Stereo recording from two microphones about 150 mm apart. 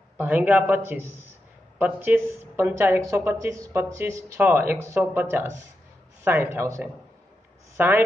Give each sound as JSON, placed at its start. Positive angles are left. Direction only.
{"t": 0.2, "sound": "speech", "side_deg": -10}